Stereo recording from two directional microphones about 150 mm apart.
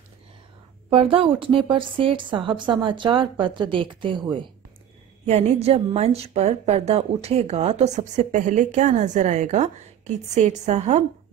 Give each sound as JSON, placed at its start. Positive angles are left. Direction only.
{"t": 0.8, "sound": "a woman's voice", "side_deg": -40}
{"t": 5.2, "sound": "a woman's voice", "side_deg": -45}